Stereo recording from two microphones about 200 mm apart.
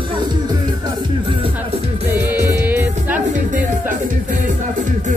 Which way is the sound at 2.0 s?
10° right (ahead or behind).